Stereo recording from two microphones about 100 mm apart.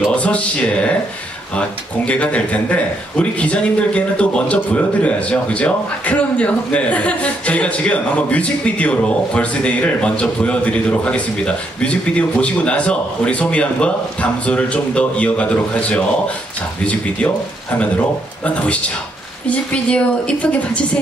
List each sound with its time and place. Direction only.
0.0 s a man's voice: 10° left (ahead or behind)